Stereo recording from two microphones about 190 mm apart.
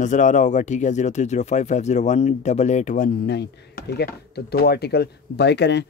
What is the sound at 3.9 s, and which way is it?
Speech, 55° left (ahead or behind).